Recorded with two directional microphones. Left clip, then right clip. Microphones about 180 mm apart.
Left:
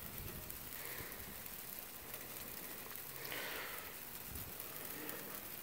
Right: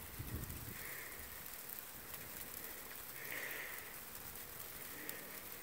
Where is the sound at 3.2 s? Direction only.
15° left (ahead or behind).